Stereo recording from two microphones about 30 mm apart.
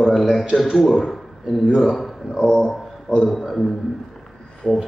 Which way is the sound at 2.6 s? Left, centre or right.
Centre.